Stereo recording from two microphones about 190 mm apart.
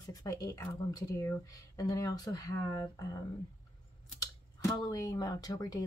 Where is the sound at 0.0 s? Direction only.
20° left (ahead or behind).